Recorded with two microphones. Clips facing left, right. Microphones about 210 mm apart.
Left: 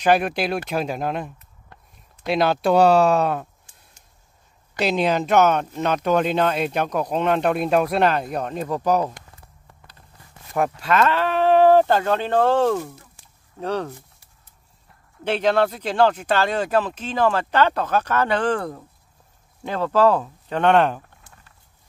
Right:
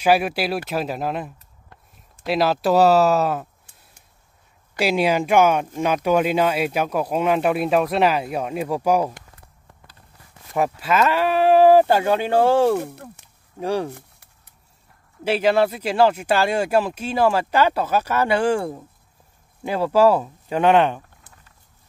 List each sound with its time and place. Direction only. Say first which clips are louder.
0.0 s speech: even; 5° right (ahead or behind)
4.7 s speech: right 1 dB; 10° right (ahead or behind)
10.5 s speech: even; 5° right (ahead or behind)
12.8 s speech: right 5 dB; 65° right (ahead or behind)
13.6 s speech: right 2 dB; 10° right (ahead or behind)
15.2 s speech: right 1 dB; 5° right (ahead or behind)